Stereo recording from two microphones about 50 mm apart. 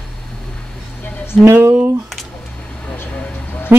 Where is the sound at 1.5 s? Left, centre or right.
Right.